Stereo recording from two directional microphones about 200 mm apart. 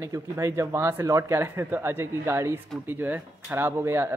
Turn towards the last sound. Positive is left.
turn(degrees=-10)  # may be behind; listen again after turning